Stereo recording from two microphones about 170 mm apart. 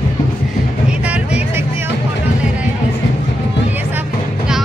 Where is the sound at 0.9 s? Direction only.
5° right (ahead or behind).